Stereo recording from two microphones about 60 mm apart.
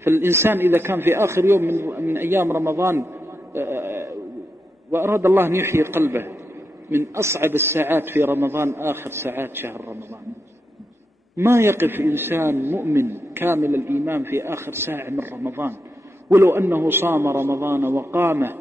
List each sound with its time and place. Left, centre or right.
0.0 s a man's voice: right
11.3 s a man's voice: right
13.7 s a man's voice: right